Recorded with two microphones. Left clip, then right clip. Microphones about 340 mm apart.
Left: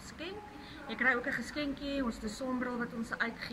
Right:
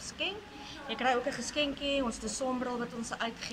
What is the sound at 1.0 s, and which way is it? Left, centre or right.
Speech, centre.